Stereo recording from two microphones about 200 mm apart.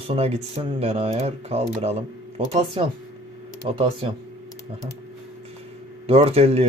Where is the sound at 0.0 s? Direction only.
30° right (ahead or behind).